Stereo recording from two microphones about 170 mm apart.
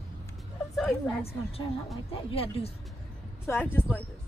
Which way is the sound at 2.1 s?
35° left (ahead or behind).